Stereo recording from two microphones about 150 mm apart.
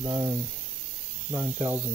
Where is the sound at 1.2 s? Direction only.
15° right (ahead or behind).